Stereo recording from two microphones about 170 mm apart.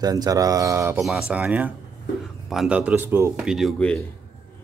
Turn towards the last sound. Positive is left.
turn(degrees=5)  # may be behind; listen again after turning